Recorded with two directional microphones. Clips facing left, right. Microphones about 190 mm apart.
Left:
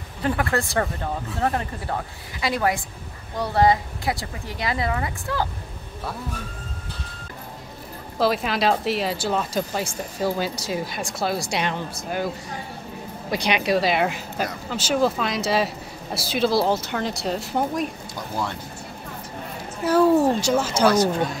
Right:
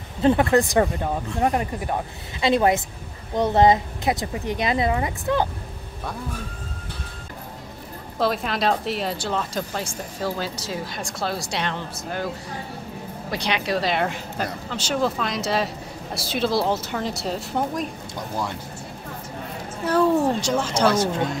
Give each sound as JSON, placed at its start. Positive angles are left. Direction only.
{"t": 0.2, "sound": "speech", "side_deg": -25}
{"t": 8.2, "sound": "speech", "side_deg": 5}
{"t": 13.3, "sound": "speech", "side_deg": 15}
{"t": 19.8, "sound": "speech", "side_deg": 5}
{"t": 20.9, "sound": "speech", "side_deg": -25}